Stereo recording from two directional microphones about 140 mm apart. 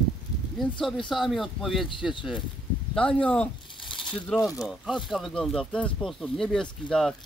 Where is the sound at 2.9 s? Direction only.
5° left (ahead or behind).